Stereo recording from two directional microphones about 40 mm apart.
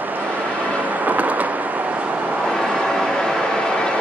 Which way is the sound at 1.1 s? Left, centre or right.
Right.